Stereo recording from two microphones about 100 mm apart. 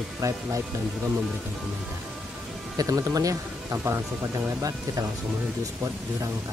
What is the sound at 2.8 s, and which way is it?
Speech, 35° right (ahead or behind).